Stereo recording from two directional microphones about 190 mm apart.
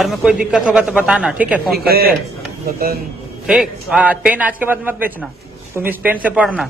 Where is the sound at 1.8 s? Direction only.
55° right (ahead or behind).